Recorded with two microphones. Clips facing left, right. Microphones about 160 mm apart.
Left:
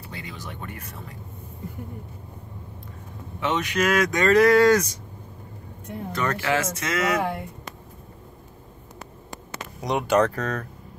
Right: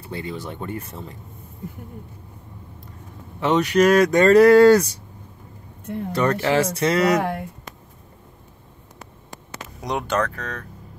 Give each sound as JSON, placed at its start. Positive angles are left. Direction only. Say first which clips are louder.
{"t": 0.1, "sound": "speech", "louder": "right 8 dB", "side_deg": -30}
{"t": 3.3, "sound": "speech", "louder": "right 7 dB", "side_deg": -35}
{"t": 6.1, "sound": "speech", "louder": "right 5 dB", "side_deg": -35}
{"t": 9.8, "sound": "speech", "louder": "left 1 dB", "side_deg": 0}
{"t": 10.3, "sound": "speech", "louder": "left 5 dB", "side_deg": 40}